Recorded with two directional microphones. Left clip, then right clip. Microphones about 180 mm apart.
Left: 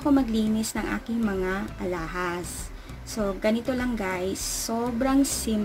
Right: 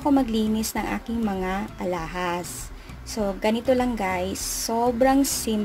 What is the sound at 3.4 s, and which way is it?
Speech, 20° right (ahead or behind).